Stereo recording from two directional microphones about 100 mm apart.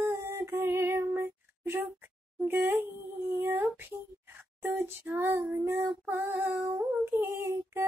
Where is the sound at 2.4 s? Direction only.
20° right (ahead or behind).